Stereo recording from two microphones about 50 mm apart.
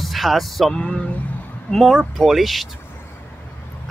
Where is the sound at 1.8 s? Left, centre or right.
Centre.